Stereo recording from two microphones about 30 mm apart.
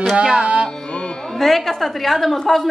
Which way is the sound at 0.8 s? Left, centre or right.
Left.